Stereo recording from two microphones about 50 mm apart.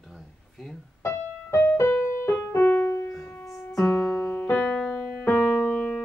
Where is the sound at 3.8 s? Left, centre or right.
Left.